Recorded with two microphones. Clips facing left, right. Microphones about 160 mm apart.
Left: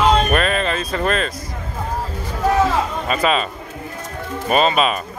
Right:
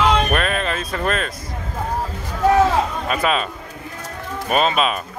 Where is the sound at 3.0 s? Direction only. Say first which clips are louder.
Left 2 dB; centre (ahead or behind).